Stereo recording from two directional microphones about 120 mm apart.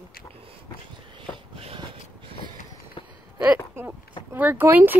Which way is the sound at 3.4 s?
15° right (ahead or behind).